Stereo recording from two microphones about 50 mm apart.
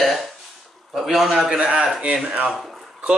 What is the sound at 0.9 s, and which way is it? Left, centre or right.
A man's voice, centre.